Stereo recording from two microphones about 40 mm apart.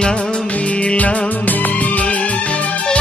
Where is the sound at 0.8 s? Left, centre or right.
Left.